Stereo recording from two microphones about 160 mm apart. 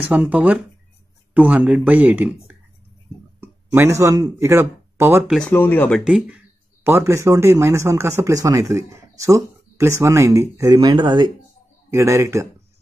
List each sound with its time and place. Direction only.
0.0 s speech: 10° right (ahead or behind)
3.3 s speech: 15° right (ahead or behind)
5.3 s speech: 5° left (ahead or behind); by 12.4 s 15° right (ahead or behind)